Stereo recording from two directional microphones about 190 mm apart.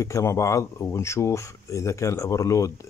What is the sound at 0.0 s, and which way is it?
Speech, 15° left (ahead or behind).